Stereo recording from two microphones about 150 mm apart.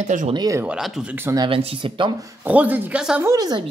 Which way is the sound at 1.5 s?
35° right (ahead or behind).